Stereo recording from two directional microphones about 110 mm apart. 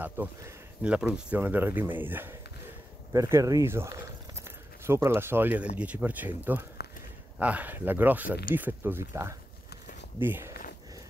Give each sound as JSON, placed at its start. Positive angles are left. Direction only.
{"t": 0.2, "sound": "speech", "side_deg": -20}
{"t": 3.1, "sound": "speech", "side_deg": -30}